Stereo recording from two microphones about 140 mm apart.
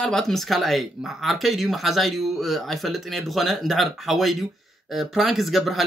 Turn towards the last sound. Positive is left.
turn(degrees=0)  # may be behind; listen again after turning